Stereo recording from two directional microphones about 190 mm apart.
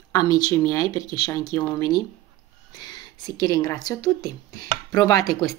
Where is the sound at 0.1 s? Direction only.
20° left (ahead or behind).